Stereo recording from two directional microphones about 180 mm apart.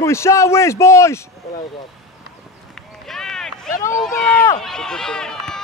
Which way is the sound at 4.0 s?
5° left (ahead or behind).